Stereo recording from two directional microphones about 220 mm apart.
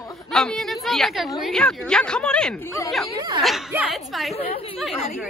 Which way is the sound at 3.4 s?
5° right (ahead or behind).